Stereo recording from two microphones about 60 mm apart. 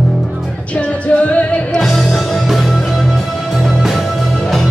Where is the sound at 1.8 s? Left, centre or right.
Centre.